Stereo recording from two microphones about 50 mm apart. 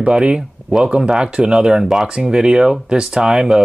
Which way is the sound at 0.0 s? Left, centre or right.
Right.